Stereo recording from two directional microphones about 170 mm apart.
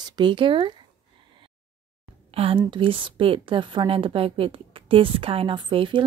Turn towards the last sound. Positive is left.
turn(degrees=-30)  # may be behind; listen again after turning